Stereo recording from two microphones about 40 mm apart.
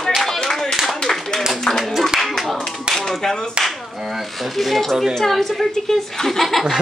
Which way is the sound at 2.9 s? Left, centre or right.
Centre.